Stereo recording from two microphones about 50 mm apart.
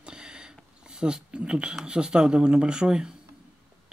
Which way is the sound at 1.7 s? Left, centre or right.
Centre.